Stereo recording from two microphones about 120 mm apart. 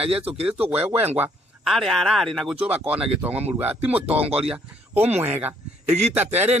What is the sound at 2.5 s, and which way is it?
Speech, 10° right (ahead or behind).